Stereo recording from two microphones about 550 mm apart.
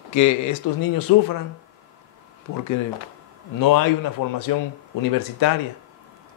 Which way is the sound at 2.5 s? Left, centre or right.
Left.